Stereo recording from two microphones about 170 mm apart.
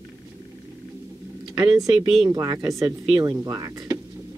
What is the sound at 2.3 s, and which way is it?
Speech, 20° right (ahead or behind).